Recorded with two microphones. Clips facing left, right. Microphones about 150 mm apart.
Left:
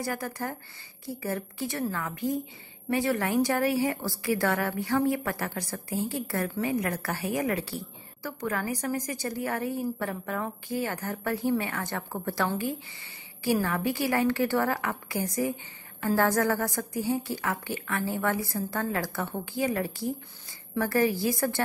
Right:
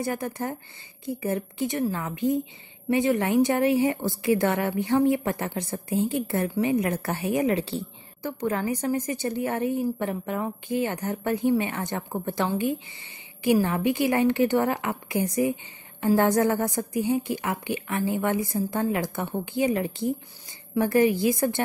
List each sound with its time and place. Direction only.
0.0 s a woman's voice: 20° right (ahead or behind)